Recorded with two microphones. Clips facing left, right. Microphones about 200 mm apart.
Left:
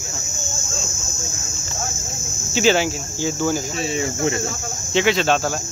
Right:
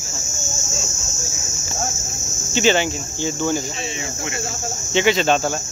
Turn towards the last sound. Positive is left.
turn(degrees=0)  # may be behind; listen again after turning